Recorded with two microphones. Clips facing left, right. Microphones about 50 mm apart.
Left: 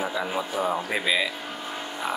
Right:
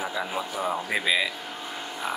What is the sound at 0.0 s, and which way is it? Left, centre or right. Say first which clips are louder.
A man's voice: left 2 dB; centre.